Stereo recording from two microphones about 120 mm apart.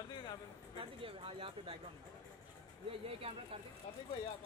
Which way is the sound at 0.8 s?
45° right (ahead or behind).